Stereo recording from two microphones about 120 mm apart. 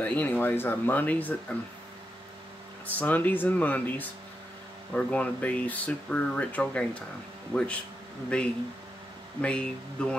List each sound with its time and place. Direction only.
0.0 s speech: 15° left (ahead or behind)
2.9 s speech: 15° left (ahead or behind)